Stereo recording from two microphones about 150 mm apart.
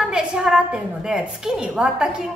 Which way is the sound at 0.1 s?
5° right (ahead or behind).